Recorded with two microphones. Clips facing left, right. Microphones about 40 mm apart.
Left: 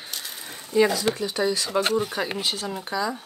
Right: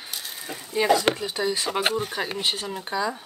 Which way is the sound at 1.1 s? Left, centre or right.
Right.